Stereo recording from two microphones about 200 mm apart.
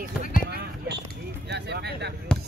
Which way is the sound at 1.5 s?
55° right (ahead or behind).